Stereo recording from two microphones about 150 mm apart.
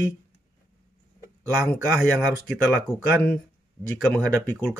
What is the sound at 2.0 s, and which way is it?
Speech, 10° right (ahead or behind).